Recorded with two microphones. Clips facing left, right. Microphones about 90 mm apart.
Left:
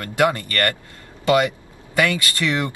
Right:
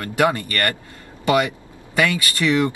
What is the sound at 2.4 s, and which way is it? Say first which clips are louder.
Speech: right 6 dB; 20° right (ahead or behind).